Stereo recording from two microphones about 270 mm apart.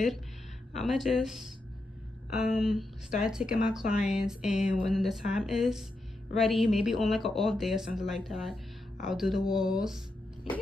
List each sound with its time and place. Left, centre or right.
0.7 s speech: centre